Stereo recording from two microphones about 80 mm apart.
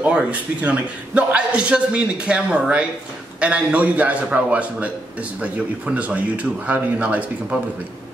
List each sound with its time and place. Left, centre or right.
0.0 s a man's voice: centre